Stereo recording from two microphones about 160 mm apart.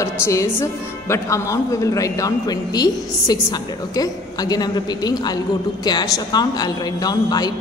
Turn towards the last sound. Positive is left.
turn(degrees=25)  # may be behind; listen again after turning